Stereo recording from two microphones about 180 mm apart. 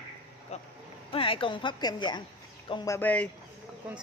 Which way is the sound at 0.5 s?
35° left (ahead or behind).